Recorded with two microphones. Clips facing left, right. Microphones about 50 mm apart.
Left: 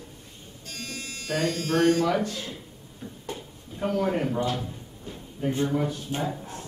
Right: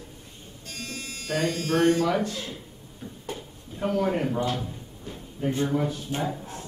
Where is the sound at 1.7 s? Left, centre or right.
Centre.